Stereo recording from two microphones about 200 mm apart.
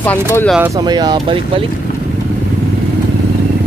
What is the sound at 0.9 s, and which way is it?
Speech, 20° right (ahead or behind).